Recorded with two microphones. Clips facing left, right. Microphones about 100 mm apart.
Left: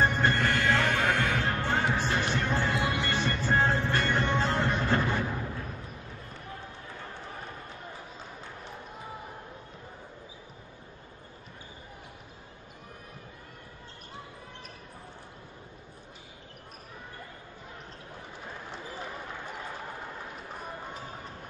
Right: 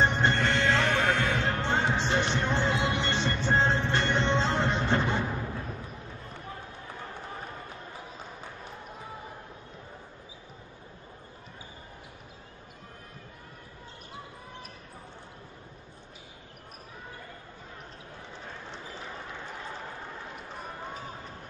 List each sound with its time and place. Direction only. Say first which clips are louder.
0.0 s music: right 1 dB; 25° right (ahead or behind)